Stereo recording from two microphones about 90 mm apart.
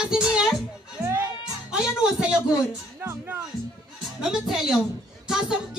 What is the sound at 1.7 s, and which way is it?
Music, 10° right (ahead or behind).